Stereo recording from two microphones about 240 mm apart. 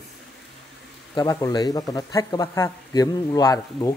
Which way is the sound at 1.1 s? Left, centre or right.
Centre.